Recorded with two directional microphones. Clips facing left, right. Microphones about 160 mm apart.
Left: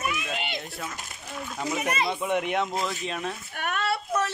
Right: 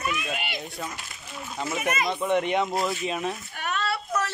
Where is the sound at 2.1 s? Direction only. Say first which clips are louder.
Right 2 dB; 5° left (ahead or behind).